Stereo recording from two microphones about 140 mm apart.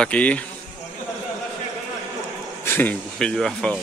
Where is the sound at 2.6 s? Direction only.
15° left (ahead or behind).